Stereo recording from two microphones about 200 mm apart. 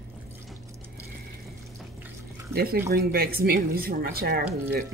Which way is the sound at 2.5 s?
50° right (ahead or behind).